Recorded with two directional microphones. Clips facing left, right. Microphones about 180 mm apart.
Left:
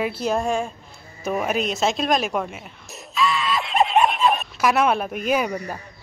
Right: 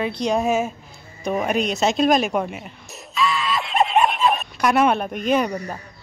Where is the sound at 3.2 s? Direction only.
Centre (ahead or behind).